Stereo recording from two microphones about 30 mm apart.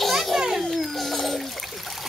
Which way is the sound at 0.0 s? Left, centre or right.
Centre.